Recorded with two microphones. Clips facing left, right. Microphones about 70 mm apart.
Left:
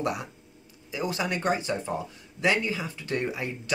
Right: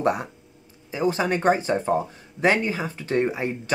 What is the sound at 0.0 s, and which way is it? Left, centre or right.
Speech, right.